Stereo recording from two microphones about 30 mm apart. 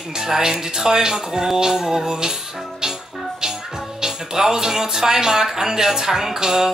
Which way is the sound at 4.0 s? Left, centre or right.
Centre.